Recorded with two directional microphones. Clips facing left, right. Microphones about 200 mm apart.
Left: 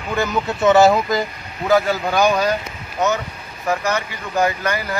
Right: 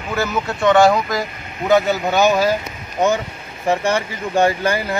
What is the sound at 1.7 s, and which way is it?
Speech, 20° right (ahead or behind).